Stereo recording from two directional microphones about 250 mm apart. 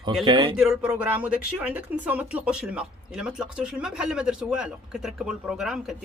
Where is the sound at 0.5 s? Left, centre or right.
Centre.